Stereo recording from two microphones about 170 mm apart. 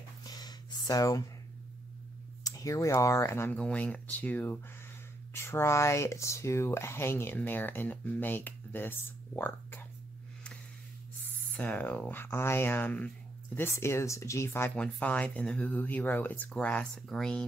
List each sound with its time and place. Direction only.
0.2 s a sound: 25° left (ahead or behind)
2.4 s speech: 20° left (ahead or behind)
11.5 s speech: 10° left (ahead or behind)